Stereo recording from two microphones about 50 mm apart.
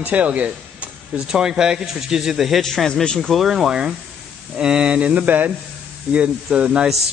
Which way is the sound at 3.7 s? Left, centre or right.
Centre.